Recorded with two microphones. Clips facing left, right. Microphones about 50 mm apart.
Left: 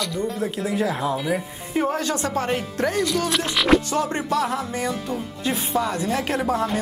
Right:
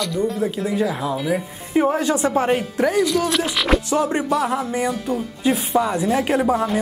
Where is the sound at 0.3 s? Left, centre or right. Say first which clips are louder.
Right 3 dB; centre.